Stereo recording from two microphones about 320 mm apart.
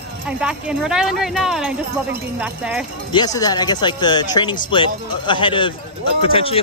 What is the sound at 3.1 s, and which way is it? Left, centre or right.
Speech, centre.